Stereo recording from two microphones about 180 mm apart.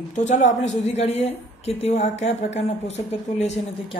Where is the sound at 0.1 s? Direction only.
40° left (ahead or behind).